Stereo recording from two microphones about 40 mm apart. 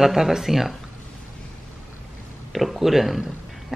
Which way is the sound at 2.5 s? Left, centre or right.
Centre.